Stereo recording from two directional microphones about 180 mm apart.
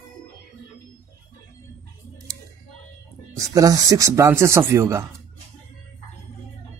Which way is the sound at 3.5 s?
20° right (ahead or behind).